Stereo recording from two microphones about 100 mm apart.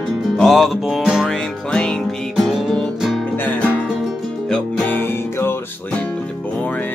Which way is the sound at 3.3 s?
20° left (ahead or behind).